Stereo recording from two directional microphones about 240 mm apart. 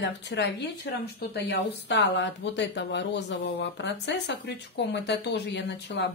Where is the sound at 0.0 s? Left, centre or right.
Left.